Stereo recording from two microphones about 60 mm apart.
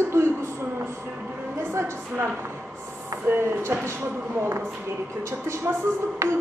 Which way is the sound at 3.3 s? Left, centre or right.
Right.